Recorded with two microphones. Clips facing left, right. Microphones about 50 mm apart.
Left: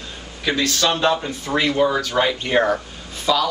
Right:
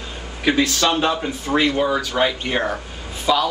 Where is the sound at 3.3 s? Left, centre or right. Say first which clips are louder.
Right 1 dB; centre.